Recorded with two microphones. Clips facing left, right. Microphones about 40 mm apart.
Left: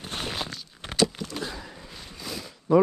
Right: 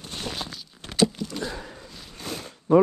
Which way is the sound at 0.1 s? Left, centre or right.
Centre.